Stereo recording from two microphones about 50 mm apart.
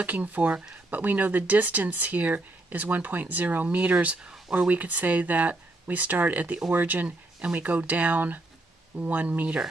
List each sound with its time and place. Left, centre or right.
0.0 s speech: right
4.6 s speech: right